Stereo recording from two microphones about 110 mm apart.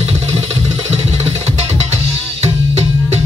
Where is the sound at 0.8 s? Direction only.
70° right (ahead or behind).